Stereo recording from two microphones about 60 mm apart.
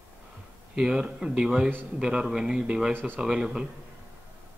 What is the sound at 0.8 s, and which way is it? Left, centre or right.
Speech, centre.